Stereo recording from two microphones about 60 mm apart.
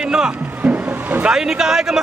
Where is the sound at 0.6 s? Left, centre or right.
Right.